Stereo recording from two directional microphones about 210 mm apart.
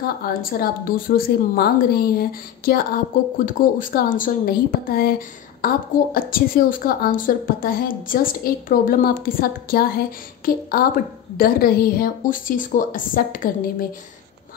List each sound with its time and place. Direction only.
0.2 s a woman's voice: 45° left (ahead or behind)